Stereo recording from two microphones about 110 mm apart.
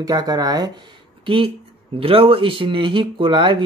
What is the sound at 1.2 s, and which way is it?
A man's voice, 55° right (ahead or behind).